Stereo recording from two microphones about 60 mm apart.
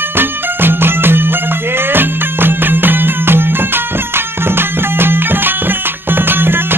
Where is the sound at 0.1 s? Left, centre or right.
Right.